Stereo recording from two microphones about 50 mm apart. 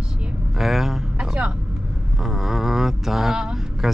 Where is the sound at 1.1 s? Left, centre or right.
Right.